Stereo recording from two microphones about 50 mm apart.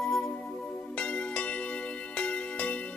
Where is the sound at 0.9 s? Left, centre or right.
Left.